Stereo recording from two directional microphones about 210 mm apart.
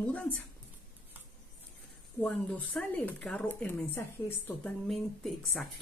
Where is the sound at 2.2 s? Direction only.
5° left (ahead or behind).